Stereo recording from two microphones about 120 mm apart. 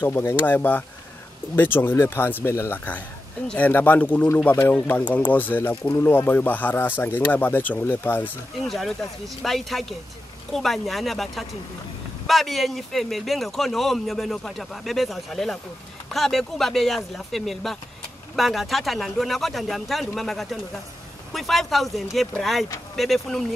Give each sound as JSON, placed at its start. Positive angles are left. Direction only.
{"t": 0.0, "sound": "speech", "side_deg": 20}
{"t": 8.6, "sound": "speech", "side_deg": 0}